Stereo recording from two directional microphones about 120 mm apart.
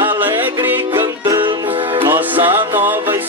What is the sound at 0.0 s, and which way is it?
Music, 15° right (ahead or behind).